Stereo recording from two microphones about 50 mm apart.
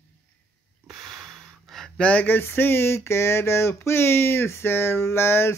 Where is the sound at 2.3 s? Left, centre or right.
Left.